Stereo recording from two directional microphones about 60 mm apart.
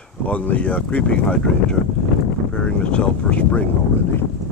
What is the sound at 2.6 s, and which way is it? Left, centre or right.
Speech, centre.